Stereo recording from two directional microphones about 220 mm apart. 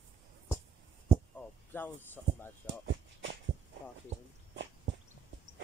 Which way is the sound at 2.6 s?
55° right (ahead or behind).